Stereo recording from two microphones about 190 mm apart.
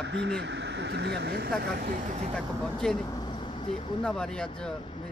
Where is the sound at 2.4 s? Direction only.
5° left (ahead or behind).